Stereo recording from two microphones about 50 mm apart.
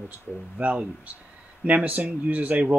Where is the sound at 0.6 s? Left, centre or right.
Right.